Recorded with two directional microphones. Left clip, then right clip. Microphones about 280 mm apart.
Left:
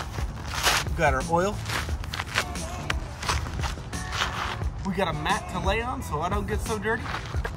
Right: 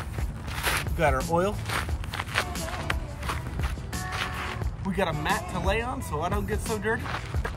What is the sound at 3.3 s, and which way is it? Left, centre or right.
Walk, left.